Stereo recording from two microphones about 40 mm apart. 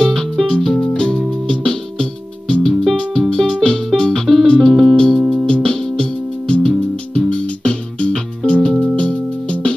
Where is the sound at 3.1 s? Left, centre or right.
Centre.